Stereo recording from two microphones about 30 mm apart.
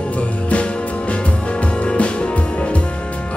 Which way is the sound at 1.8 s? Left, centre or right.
Left.